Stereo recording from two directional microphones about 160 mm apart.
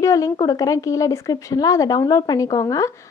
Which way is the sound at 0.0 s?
20° left (ahead or behind).